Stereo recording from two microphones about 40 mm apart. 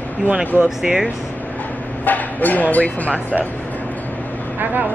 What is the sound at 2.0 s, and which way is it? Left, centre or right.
Speech, left.